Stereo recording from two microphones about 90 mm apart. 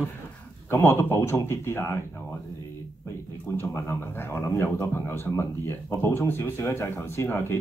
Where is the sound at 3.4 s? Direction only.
25° left (ahead or behind).